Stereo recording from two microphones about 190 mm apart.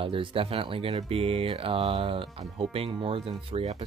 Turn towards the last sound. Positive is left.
turn(degrees=-35)  # may be behind; listen again after turning